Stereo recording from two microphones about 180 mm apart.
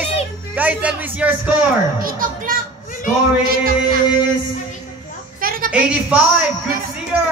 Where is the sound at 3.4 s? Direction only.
55° right (ahead or behind).